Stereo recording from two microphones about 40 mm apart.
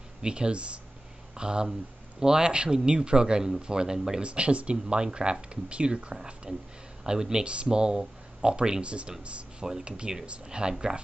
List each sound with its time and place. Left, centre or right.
0.2 s speech: right
4.2 s speech: right